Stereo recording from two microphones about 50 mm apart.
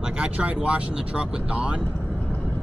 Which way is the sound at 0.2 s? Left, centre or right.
Right.